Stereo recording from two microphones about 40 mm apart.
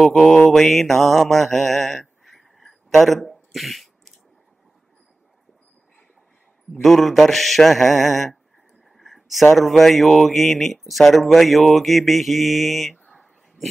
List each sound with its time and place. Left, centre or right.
0.0 s mantra: centre
0.6 s mantra: centre
6.8 s speech: centre
8.9 s a sound: centre
9.8 s speech: centre
13.1 s a sound: centre